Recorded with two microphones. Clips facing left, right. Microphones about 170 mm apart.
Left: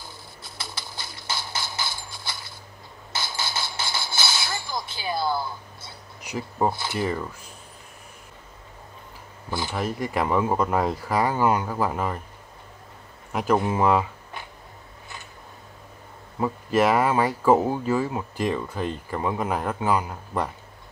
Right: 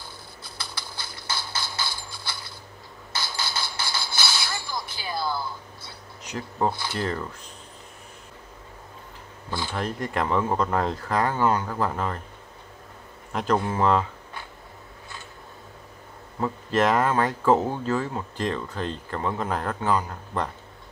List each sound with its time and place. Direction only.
0.6 s a sound: 20° left (ahead or behind)
3.1 s music: 20° left (ahead or behind)
6.2 s speech: 10° left (ahead or behind)
9.5 s speech: 15° left (ahead or behind)
13.3 s speech: 10° left (ahead or behind)
16.3 s speech: 10° left (ahead or behind)